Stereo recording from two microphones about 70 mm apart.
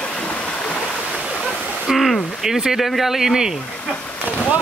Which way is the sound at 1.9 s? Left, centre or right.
Centre.